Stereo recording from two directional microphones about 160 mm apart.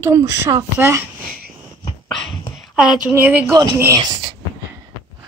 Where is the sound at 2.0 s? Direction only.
Centre (ahead or behind).